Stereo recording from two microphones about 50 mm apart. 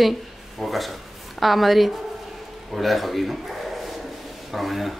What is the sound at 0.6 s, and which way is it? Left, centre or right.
A woman's voice, centre.